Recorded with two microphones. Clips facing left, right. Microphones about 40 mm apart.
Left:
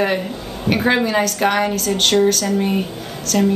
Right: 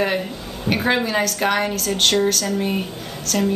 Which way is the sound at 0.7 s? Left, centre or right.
Centre.